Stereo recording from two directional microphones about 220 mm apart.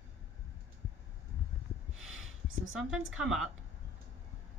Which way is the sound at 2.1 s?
65° right (ahead or behind).